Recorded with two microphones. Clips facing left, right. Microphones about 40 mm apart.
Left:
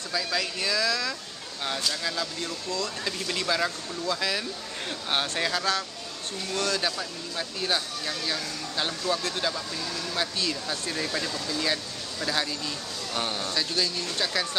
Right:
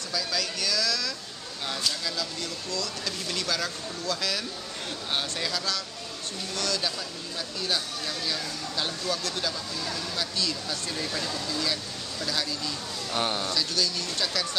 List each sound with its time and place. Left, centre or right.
0.1 s speech: left
6.8 s speech: left; by 11.6 s centre
11.6 s speech: left
13.1 s speech: centre
13.5 s speech: left